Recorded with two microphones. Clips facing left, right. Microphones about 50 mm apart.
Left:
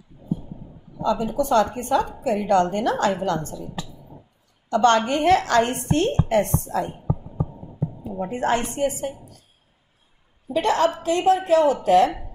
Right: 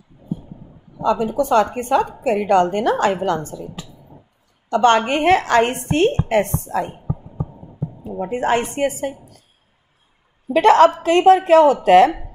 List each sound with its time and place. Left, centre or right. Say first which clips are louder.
1.0 s a woman's voice: right 4 dB; right
6.4 s a woman's voice: right 2 dB; right
8.1 s a woman's voice: right 4 dB; right
8.6 s speech: right 3 dB; right
10.5 s a woman's voice: right 9 dB; right